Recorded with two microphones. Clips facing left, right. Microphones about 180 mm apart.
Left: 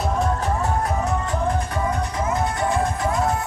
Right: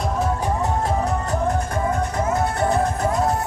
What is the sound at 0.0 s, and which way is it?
Music, 5° right (ahead or behind).